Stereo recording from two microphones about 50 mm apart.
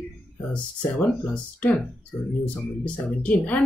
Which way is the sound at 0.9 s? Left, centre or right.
Left.